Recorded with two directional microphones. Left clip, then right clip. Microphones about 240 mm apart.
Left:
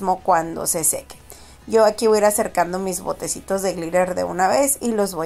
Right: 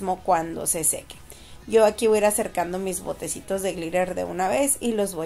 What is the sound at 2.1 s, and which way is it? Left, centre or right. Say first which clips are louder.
A woman's voice: left 5 dB; centre.